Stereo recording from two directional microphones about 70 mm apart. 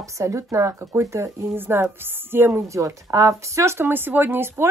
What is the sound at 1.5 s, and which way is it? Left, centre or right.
Speech, right.